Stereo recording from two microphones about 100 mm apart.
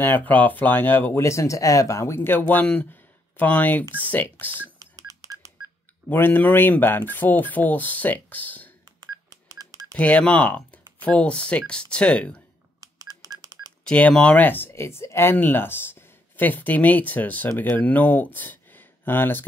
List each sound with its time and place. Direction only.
0.0 s speech: 20° left (ahead or behind)
4.7 s telephone dialing: 35° right (ahead or behind)
6.0 s speech: 20° left (ahead or behind)
9.0 s telephone dialing: 40° right (ahead or behind)
9.9 s speech: 15° left (ahead or behind)
12.8 s telephone dialing: 40° right (ahead or behind)
13.8 s speech: 10° left (ahead or behind)